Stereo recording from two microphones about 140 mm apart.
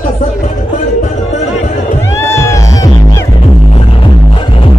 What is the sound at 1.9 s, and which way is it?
Music, 20° left (ahead or behind).